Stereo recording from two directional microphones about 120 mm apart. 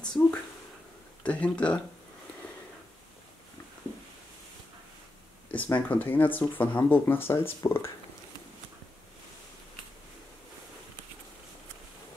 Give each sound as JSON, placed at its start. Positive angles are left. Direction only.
{"t": 0.0, "sound": "a sound", "side_deg": 10}
{"t": 1.2, "sound": "speech", "side_deg": 10}
{"t": 5.5, "sound": "speech", "side_deg": 15}